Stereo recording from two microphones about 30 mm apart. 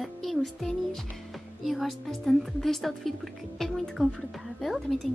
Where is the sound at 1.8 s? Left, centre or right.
Centre.